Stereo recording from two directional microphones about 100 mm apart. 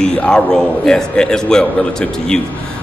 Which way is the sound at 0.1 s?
5° left (ahead or behind).